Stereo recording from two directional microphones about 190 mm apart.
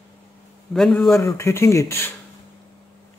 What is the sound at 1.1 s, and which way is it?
Speech, 15° left (ahead or behind).